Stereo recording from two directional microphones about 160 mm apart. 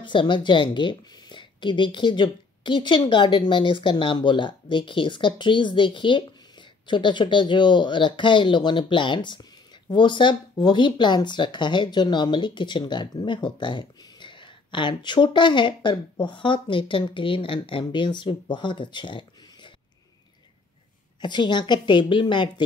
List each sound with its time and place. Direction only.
0.0 s a woman's voice: 30° left (ahead or behind)
21.2 s a woman's voice: 30° left (ahead or behind)